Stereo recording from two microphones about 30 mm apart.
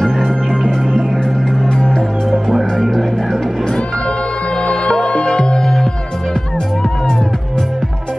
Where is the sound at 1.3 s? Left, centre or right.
Centre.